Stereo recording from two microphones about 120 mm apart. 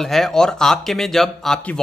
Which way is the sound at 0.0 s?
5° left (ahead or behind).